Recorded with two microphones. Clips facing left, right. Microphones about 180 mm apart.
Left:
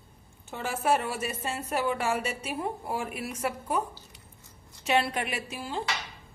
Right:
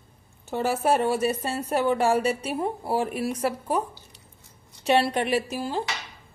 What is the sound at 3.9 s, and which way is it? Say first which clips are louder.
Chewing: even; 15° right (ahead or behind).